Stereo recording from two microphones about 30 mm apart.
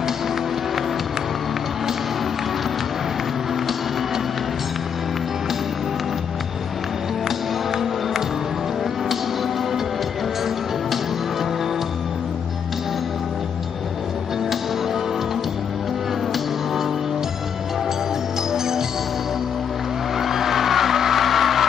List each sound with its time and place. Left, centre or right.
18.5 s music: centre
20.2 s music: centre